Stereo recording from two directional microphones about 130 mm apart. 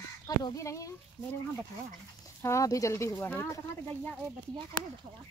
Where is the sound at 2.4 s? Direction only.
25° left (ahead or behind).